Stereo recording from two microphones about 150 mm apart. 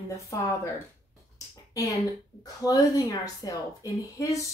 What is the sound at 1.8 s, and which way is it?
A woman's voice, 20° left (ahead or behind).